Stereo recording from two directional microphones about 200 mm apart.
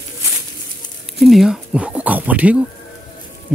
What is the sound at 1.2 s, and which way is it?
Speech, centre (ahead or behind).